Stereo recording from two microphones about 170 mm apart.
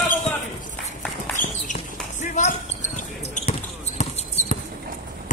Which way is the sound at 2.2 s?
45° left (ahead or behind).